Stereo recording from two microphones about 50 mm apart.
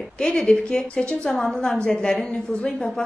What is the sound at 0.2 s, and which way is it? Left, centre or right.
A woman's voice, centre.